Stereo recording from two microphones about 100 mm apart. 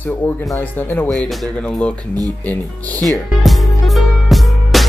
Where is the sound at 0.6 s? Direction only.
20° left (ahead or behind).